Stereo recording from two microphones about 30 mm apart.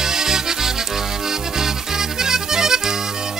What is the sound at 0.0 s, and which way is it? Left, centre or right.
Music, centre.